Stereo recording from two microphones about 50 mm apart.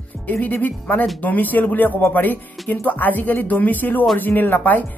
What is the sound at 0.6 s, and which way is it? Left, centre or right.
Speech, left.